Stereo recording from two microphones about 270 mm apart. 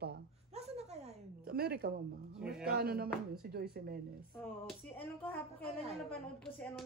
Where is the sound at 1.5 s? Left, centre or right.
Right.